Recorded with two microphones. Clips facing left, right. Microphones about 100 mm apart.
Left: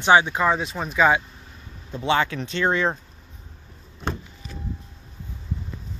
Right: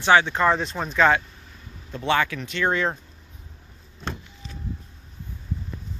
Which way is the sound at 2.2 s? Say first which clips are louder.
Left 1 dB; 30° left (ahead or behind).